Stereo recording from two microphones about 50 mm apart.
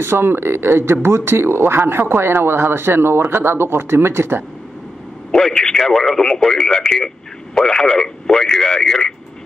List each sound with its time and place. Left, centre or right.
0.0 s speech: right
5.3 s speech: centre